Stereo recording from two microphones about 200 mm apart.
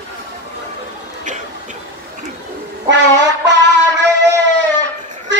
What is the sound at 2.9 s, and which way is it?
Music, 60° right (ahead or behind).